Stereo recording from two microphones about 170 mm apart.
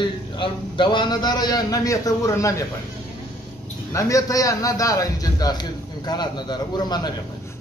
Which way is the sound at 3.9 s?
20° left (ahead or behind).